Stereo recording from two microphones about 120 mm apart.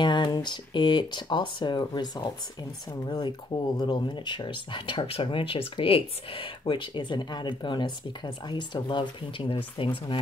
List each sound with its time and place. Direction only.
0.0 s speech: 40° left (ahead or behind)